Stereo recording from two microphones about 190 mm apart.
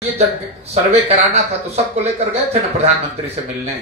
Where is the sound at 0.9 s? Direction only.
35° right (ahead or behind).